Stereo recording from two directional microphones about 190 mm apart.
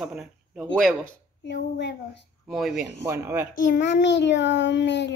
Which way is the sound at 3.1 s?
10° right (ahead or behind).